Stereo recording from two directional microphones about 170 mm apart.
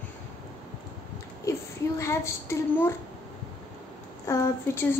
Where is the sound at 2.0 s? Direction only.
15° left (ahead or behind).